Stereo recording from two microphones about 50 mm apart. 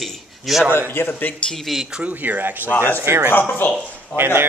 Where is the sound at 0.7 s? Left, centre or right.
Left.